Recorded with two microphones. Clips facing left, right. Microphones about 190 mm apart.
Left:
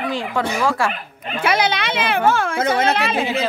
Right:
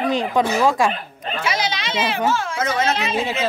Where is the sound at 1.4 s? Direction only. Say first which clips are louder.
Left 6 dB; 60° left (ahead or behind).